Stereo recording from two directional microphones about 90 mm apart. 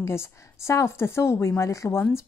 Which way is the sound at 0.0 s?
30° left (ahead or behind).